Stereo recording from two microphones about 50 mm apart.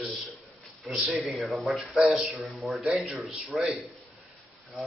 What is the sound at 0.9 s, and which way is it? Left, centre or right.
Speech, centre.